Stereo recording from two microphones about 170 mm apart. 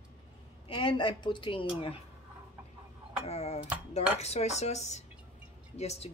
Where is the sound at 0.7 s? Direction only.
30° left (ahead or behind).